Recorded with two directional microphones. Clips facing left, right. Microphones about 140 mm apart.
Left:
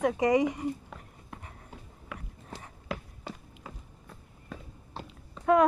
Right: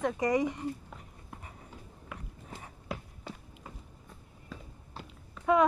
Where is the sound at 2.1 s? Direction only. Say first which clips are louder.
Left 2 dB; 90° left.